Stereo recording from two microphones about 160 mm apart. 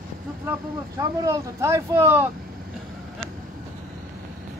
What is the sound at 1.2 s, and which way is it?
Speech, 15° right (ahead or behind).